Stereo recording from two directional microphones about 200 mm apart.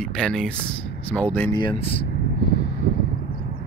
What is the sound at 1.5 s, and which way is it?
Speech, 25° left (ahead or behind).